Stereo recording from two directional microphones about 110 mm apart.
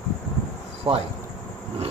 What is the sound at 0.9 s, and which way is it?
Speech, 55° right (ahead or behind).